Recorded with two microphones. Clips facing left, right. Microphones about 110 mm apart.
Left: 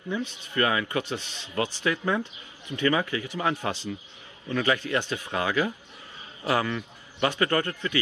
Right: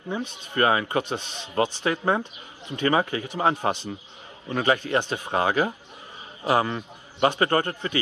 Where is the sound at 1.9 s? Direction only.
45° right (ahead or behind).